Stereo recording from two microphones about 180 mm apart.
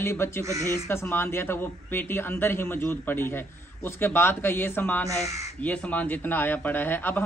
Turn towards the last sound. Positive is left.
turn(degrees=10)  # may be behind; listen again after turning